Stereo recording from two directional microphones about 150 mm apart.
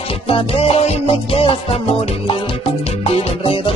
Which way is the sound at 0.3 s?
40° left (ahead or behind).